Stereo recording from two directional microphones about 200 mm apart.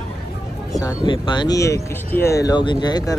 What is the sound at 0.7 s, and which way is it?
Speech, 20° left (ahead or behind).